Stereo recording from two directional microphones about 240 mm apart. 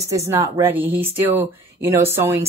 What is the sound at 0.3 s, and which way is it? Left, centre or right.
Speech, centre.